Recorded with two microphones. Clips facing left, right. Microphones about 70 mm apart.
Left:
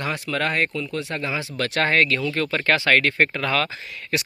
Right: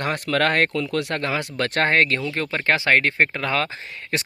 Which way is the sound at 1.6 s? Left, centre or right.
Right.